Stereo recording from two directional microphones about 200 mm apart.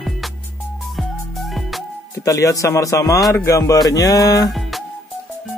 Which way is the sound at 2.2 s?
15° left (ahead or behind).